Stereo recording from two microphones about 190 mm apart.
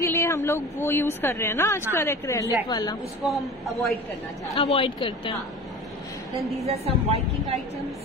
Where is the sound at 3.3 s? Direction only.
Centre (ahead or behind).